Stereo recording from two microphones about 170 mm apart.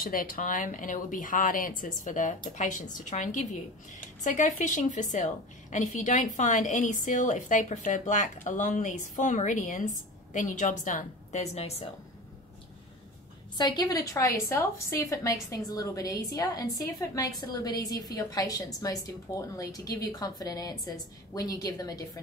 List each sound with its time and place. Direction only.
0.0 s a woman's voice: 55° left (ahead or behind); by 11.9 s 40° left (ahead or behind)
13.6 s a woman's voice: 25° left (ahead or behind)